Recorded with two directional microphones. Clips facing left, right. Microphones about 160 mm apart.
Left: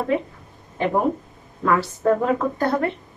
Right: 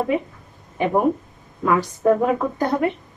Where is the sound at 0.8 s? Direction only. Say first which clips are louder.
Right 2 dB; 15° right (ahead or behind).